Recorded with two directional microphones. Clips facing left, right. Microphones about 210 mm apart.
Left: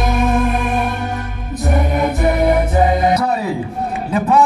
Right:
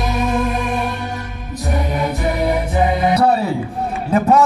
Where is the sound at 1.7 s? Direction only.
50° left (ahead or behind).